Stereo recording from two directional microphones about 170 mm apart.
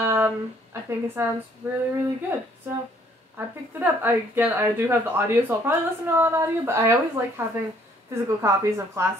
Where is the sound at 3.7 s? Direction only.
10° right (ahead or behind).